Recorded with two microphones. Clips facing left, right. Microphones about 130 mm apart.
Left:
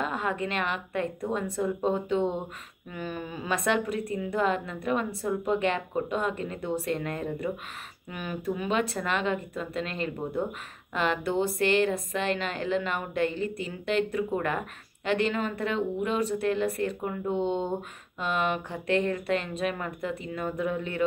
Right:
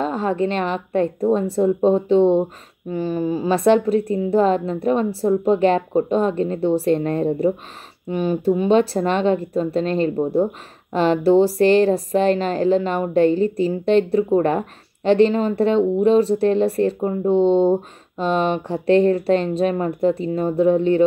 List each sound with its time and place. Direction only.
0.0 s speech: 30° right (ahead or behind)